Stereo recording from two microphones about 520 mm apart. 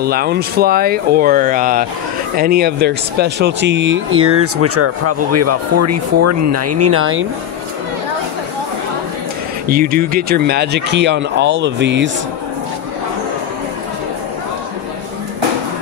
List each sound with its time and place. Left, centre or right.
0.0 s speech: centre
9.7 s speech: centre